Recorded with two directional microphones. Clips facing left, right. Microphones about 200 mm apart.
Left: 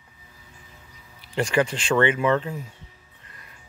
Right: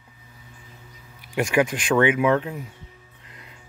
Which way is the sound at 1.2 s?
10° right (ahead or behind).